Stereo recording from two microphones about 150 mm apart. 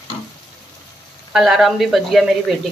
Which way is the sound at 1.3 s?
Centre (ahead or behind).